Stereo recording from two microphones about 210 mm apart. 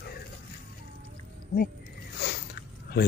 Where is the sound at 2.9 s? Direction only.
45° left (ahead or behind).